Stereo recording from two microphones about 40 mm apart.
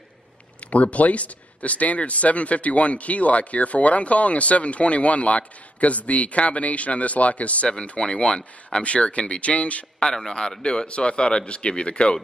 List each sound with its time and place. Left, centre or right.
0.7 s speech: left
9.9 s speech: centre